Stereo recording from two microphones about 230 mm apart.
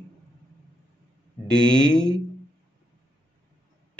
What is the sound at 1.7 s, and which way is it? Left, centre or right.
Speech, centre.